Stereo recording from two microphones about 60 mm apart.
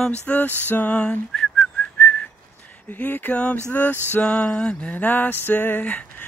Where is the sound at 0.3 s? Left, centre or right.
Left.